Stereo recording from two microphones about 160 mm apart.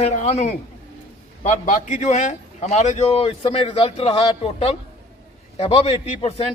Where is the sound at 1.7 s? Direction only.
50° left (ahead or behind).